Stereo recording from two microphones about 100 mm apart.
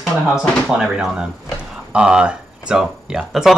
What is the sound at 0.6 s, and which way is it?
Speech, 10° right (ahead or behind).